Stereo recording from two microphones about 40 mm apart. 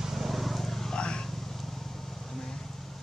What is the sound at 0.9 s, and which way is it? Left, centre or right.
Vehicle, left.